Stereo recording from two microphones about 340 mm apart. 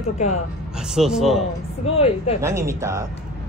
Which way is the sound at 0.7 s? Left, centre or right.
Centre.